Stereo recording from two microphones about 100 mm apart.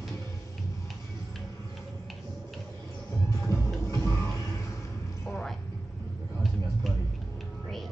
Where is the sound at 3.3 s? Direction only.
30° left (ahead or behind).